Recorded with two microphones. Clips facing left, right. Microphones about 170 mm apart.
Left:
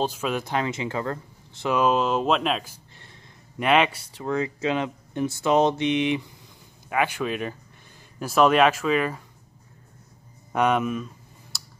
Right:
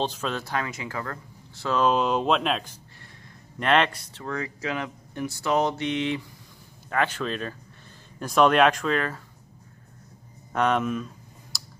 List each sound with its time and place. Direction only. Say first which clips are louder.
0.0 s speech: left 2 dB; 10° left (ahead or behind)
1.8 s speech: even; centre (ahead or behind)
4.2 s speech: left 6 dB; 20° left (ahead or behind)
10.5 s speech: left 1 dB; 10° left (ahead or behind)
11.5 s finger snapping: even; centre (ahead or behind)